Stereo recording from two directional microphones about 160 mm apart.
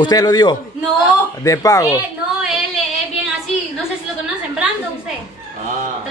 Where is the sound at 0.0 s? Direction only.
25° left (ahead or behind).